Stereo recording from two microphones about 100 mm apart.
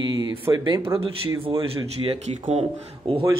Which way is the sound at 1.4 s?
70° right (ahead or behind).